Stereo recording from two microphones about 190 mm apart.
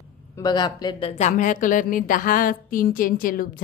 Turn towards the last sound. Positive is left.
turn(degrees=50)  # may be behind; listen again after turning